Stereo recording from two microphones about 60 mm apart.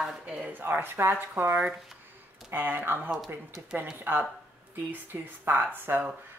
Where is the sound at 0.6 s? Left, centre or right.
Right.